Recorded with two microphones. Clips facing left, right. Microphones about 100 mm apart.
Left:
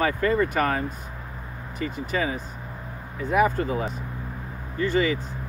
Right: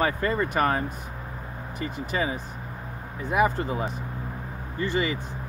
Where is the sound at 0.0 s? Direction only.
20° right (ahead or behind).